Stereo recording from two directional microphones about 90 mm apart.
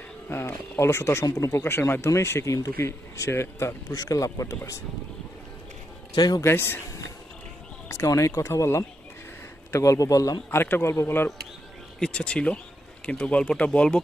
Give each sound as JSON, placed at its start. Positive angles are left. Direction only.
{"t": 0.3, "sound": "speech", "side_deg": 30}
{"t": 6.1, "sound": "a man's voice", "side_deg": 50}
{"t": 6.4, "sound": "speech", "side_deg": 25}
{"t": 7.9, "sound": "speech", "side_deg": 35}
{"t": 10.5, "sound": "speech", "side_deg": 25}
{"t": 12.0, "sound": "speech", "side_deg": 10}